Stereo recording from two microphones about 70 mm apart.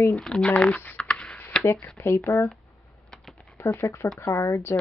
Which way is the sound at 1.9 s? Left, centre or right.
Left.